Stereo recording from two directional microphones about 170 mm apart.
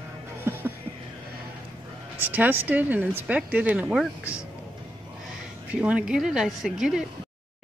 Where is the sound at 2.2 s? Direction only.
10° right (ahead or behind).